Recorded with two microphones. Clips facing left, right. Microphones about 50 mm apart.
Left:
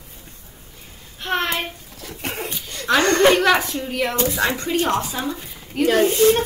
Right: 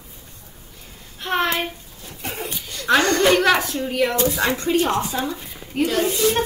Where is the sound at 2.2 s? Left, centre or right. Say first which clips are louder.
Left 1 dB; left.